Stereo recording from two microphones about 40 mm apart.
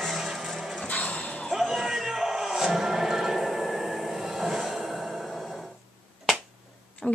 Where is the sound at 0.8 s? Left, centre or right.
Left.